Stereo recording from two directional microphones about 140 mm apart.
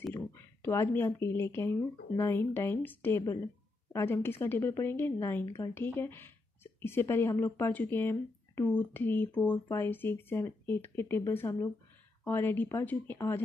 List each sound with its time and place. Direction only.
0.1 s a woman's voice: 15° left (ahead or behind)